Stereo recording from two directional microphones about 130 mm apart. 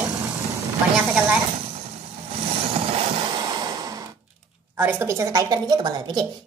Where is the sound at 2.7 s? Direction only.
45° right (ahead or behind); by 4.0 s 30° right (ahead or behind).